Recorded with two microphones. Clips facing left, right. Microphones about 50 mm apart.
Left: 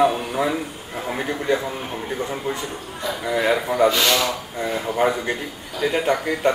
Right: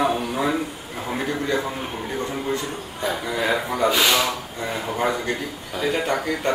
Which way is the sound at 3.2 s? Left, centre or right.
Centre.